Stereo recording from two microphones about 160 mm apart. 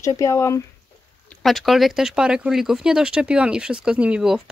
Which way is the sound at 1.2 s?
Centre (ahead or behind).